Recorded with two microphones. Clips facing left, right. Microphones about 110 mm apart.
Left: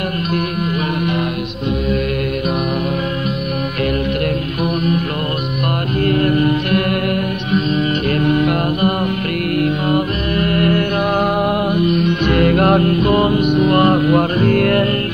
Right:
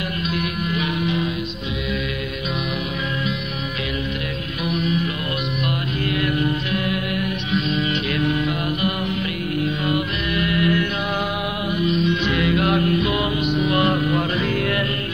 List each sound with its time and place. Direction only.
4.6 s music: 50° left (ahead or behind)
6.0 s music: 50° left (ahead or behind)
8.1 s music: 50° left (ahead or behind)